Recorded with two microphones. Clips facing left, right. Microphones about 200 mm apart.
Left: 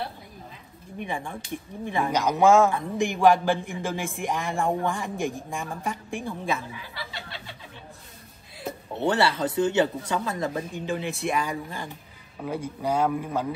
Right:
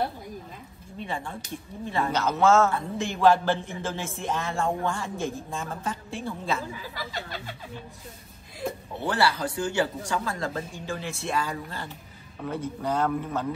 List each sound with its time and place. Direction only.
0.9 s a woman's voice: 15° left (ahead or behind)
6.9 s a sound: 45° right (ahead or behind)
9.0 s a woman's voice: 25° left (ahead or behind)